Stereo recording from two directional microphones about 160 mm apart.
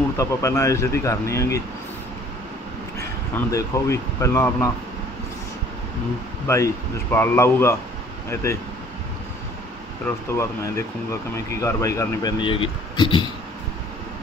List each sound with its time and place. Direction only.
0.2 s speech: 20° left (ahead or behind)
3.0 s speech: 20° left (ahead or behind)
6.4 s speech: 15° left (ahead or behind)
10.0 s speech: 15° left (ahead or behind)